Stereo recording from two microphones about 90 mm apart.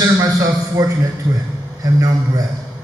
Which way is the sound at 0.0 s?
40° right (ahead or behind).